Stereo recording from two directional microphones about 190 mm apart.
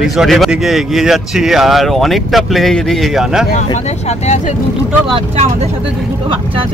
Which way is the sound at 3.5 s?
35° left (ahead or behind).